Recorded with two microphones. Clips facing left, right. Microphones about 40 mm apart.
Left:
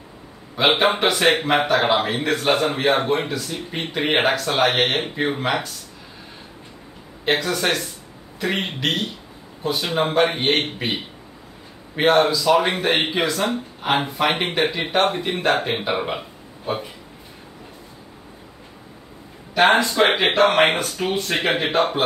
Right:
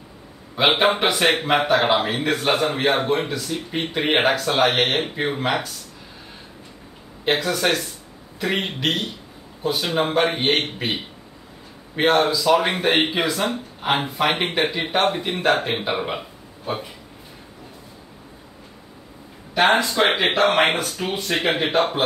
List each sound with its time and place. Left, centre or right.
0.6 s a man's voice: centre
7.2 s a man's voice: centre
19.5 s a man's voice: centre